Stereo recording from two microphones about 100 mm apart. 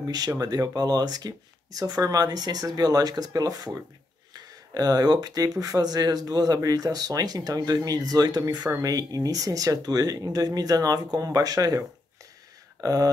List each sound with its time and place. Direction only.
0.3 s speech: 35° right (ahead or behind)
12.8 s speech: 35° right (ahead or behind)